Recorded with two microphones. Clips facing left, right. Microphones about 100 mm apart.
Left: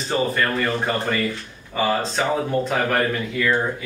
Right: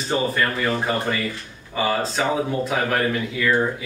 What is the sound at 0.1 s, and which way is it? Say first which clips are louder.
Speech: left 1 dB; 5° right (ahead or behind).